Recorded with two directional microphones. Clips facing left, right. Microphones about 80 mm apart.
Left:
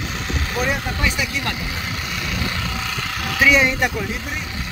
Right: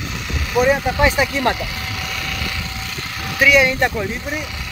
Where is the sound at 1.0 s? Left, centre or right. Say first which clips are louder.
Right 9 dB; right.